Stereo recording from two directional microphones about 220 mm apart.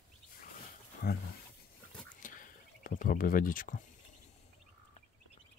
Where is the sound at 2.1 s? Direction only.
35° left (ahead or behind).